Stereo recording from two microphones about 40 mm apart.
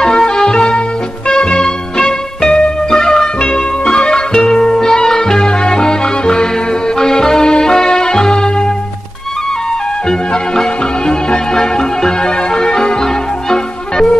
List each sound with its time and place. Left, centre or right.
0.0 s music: centre
10.0 s music: centre